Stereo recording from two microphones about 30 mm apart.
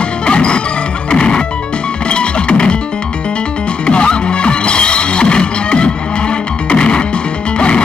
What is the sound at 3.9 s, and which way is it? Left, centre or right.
Music, left.